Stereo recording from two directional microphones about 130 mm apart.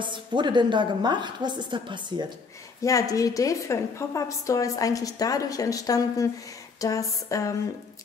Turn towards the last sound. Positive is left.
turn(degrees=25)  # may be behind; listen again after turning